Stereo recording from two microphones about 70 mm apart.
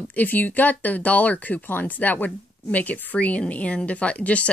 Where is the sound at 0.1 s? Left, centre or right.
Left.